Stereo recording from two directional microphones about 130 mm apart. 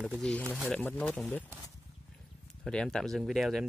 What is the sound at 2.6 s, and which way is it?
Speech, 5° left (ahead or behind).